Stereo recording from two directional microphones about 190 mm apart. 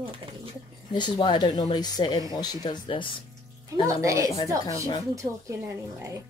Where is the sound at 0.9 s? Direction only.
25° left (ahead or behind).